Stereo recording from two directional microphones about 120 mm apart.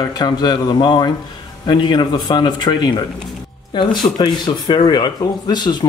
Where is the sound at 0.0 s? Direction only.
35° left (ahead or behind).